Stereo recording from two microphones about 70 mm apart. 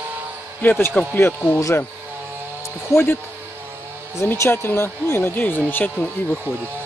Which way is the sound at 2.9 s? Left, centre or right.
Left.